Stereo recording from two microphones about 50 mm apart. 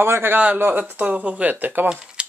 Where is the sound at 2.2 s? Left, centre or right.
Centre.